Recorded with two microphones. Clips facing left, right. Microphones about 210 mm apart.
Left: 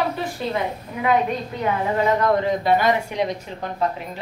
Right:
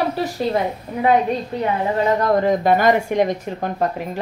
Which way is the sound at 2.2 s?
45° right (ahead or behind).